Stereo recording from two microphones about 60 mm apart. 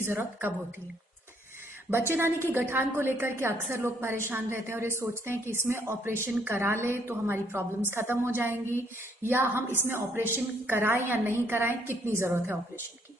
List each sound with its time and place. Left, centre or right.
0.0 s a woman's voice: right
1.9 s a woman's voice: right